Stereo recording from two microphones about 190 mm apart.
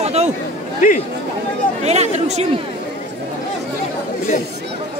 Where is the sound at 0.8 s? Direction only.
40° left (ahead or behind).